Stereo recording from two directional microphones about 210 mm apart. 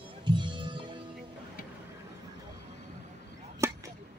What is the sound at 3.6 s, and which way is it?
Chop, 10° right (ahead or behind).